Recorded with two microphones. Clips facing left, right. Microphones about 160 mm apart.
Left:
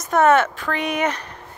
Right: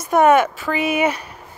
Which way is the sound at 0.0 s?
10° right (ahead or behind).